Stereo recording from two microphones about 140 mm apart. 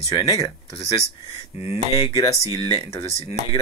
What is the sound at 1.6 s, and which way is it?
Speech, 45° left (ahead or behind).